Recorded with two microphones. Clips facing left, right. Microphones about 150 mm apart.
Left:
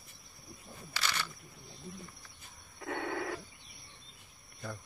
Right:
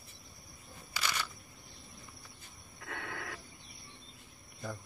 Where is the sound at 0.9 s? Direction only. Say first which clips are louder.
Even; 10° right (ahead or behind).